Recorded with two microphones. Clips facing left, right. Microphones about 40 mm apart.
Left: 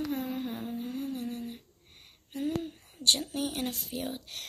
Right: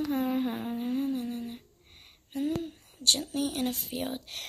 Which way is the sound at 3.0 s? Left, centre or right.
Centre.